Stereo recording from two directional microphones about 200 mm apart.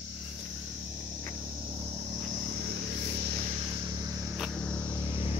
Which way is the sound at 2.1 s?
40° right (ahead or behind).